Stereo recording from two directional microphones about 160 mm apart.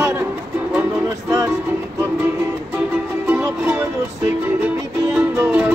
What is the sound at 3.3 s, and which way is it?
Music, 15° right (ahead or behind).